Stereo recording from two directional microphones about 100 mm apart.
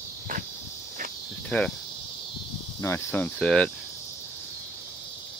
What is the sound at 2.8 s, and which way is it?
Speech, 25° left (ahead or behind).